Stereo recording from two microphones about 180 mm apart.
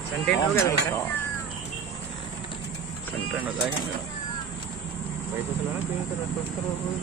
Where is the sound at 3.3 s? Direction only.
10° right (ahead or behind).